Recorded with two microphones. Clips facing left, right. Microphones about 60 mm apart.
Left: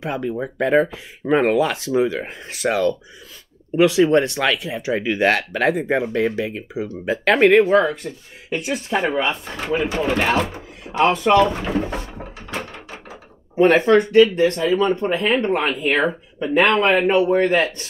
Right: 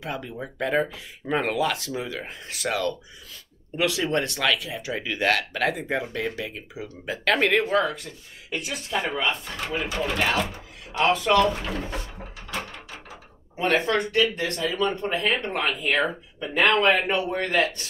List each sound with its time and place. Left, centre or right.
0.0 s speech: left
13.6 s speech: left